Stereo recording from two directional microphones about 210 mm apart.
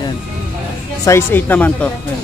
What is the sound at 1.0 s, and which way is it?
Speech, 10° left (ahead or behind).